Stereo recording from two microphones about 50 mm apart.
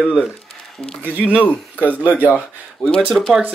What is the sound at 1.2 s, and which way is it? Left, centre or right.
Speech, right.